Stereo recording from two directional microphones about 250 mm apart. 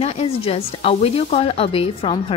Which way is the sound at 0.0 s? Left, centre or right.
Left.